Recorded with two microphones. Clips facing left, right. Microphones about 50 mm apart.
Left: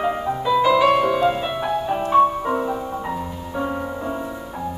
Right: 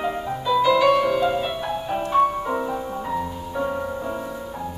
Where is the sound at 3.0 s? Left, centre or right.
Centre.